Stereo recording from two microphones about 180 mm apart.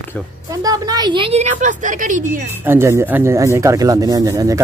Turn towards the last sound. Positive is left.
turn(degrees=-15)  # may be behind; listen again after turning